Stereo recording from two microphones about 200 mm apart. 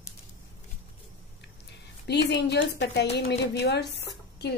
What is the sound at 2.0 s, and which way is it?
Speech, 60° left (ahead or behind).